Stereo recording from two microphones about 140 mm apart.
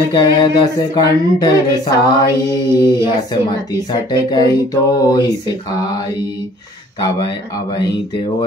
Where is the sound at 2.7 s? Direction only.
30° left (ahead or behind).